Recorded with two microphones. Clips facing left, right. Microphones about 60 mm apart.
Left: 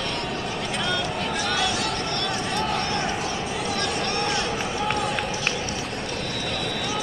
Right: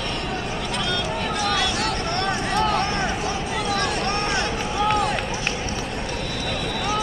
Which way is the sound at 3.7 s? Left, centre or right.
Right.